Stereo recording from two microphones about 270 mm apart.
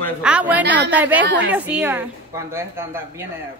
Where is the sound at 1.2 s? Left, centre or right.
Right.